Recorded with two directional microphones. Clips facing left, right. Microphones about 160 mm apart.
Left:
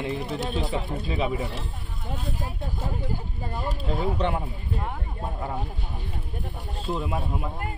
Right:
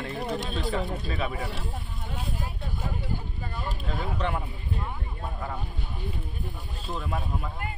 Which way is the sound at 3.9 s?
30° left (ahead or behind).